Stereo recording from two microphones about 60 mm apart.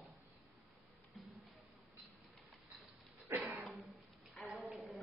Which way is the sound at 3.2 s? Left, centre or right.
Right.